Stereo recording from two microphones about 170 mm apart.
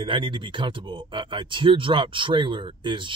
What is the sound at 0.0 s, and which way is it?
Speech, 30° right (ahead or behind).